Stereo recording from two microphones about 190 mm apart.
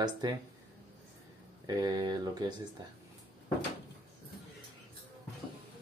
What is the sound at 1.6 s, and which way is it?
Speech, 20° right (ahead or behind).